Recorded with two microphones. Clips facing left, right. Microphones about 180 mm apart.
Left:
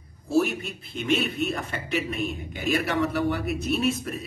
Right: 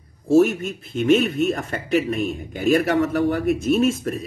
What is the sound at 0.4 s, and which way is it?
A man's voice, 50° right (ahead or behind).